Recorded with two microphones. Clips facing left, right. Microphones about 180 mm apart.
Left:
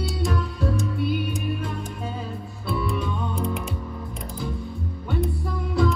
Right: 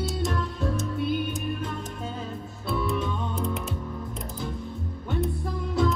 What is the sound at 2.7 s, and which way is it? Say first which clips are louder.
Music: left 1 dB; centre (ahead or behind).